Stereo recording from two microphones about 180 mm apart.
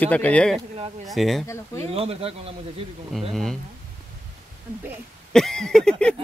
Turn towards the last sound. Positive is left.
turn(degrees=5)  # may be behind; listen again after turning